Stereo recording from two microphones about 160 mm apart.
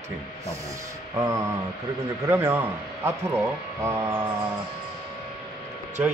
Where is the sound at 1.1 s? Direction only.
20° right (ahead or behind).